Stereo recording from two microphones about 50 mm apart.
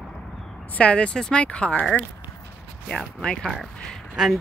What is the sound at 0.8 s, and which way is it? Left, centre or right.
Speech, left.